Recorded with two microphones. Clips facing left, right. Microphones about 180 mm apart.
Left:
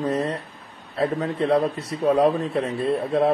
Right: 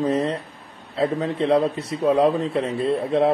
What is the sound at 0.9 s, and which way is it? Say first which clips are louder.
A man's voice: right 1 dB; 25° right (ahead or behind).